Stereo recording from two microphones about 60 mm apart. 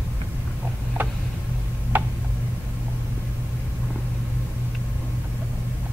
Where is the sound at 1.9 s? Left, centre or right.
Right.